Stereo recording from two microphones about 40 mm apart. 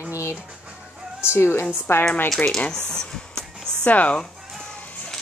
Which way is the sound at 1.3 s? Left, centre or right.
Left.